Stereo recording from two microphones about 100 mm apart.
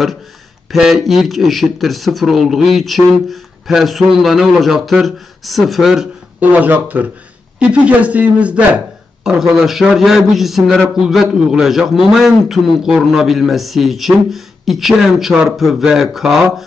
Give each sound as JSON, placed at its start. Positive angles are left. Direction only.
{"t": 0.7, "sound": "a man's voice", "side_deg": -5}
{"t": 6.4, "sound": "a man's voice", "side_deg": -15}